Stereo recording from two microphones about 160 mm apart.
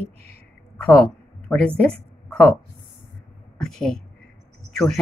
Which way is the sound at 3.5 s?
5° left (ahead or behind).